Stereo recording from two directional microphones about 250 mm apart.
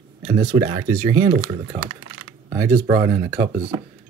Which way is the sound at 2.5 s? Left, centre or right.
Centre.